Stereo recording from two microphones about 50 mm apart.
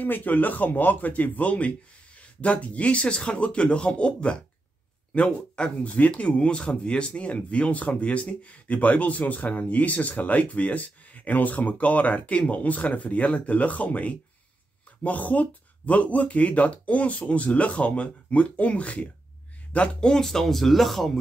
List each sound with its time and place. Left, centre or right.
0.0 s speech: left; by 5.9 s centre
5.9 s a man's voice: left; by 21.2 s centre